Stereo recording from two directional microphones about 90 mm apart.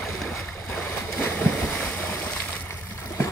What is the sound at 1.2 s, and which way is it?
Boat, 20° left (ahead or behind).